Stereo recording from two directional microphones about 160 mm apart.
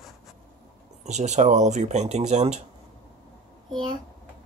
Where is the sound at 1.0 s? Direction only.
45° right (ahead or behind).